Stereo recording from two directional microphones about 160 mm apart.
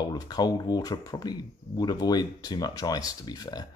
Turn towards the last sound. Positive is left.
turn(degrees=25)  # may be behind; listen again after turning